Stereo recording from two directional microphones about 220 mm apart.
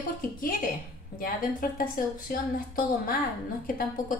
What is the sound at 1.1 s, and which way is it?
A woman's voice, 40° left (ahead or behind).